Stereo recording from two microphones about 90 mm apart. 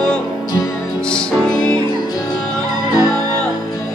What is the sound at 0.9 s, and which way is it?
Music, 10° left (ahead or behind).